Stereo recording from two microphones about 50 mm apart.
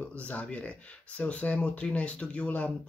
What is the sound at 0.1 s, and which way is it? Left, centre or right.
Speech, left.